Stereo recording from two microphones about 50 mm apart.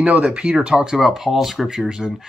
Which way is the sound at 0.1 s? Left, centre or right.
Right.